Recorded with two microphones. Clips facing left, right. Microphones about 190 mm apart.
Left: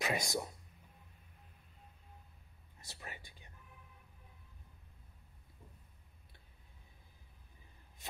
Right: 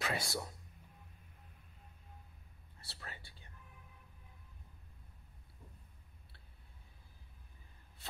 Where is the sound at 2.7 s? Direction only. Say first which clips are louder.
Left 2 dB; 15° left (ahead or behind).